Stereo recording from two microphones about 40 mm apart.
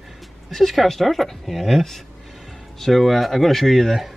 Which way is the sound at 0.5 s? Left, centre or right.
Centre.